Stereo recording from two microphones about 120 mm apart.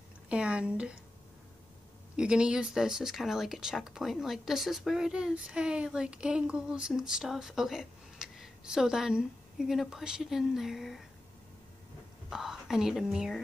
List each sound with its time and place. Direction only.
0.3 s speech: 10° right (ahead or behind)
2.1 s speech: 5° right (ahead or behind)
12.3 s speech: 5° right (ahead or behind)